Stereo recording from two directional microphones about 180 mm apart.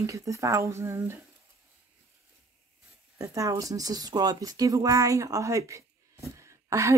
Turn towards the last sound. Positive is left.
turn(degrees=-15)  # may be behind; listen again after turning